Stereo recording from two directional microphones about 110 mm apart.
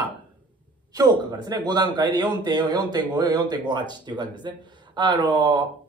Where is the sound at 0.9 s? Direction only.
40° right (ahead or behind).